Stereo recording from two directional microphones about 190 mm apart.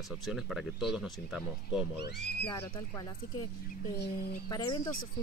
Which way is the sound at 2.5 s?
20° left (ahead or behind).